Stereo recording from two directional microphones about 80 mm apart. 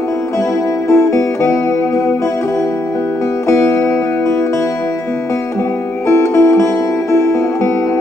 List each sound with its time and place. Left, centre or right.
0.8 s music: left
3.4 s music: left
6.0 s music: left